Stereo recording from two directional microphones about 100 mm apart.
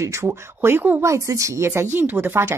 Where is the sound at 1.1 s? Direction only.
30° right (ahead or behind).